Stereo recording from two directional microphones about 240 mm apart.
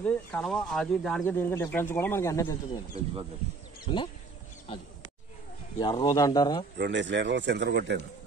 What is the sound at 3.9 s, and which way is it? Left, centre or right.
Speech, left.